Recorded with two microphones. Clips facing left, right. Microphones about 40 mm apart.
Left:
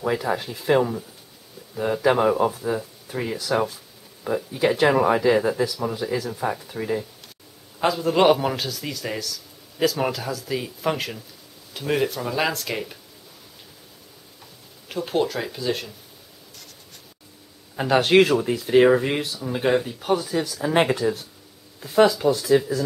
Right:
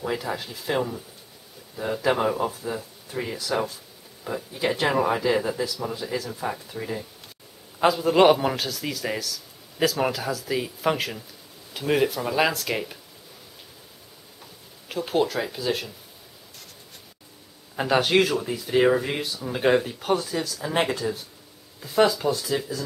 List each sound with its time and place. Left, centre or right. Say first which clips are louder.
0.0 s speech: left 5 dB; centre
7.8 s a man's voice: right 1 dB; centre
14.9 s a man's voice: even; centre
17.7 s a man's voice: left 2 dB; centre
18.7 s speech: left 4 dB; centre
19.2 s a man's voice: even; centre